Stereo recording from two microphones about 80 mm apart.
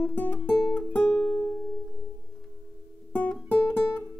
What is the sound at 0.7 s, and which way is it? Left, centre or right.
Music, centre.